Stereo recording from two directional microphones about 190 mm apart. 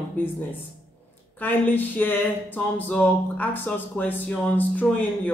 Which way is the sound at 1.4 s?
10° left (ahead or behind).